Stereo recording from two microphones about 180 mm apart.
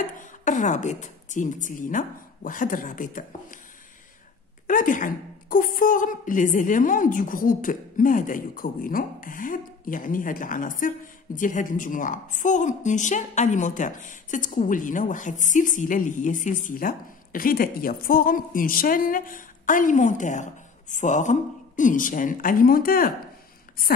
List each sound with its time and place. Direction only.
0.2 s a woman's voice: 45° left (ahead or behind)
4.6 s a woman's voice: 45° left (ahead or behind)